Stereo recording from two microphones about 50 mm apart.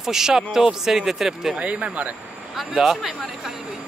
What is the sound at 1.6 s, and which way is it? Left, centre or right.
Speech, right.